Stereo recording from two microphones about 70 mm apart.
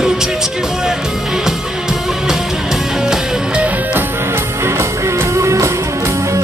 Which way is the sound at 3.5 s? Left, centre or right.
Centre.